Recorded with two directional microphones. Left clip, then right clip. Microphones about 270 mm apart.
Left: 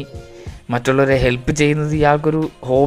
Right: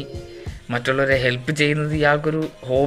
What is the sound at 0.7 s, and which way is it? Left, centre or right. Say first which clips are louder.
Speech: left 4 dB; left.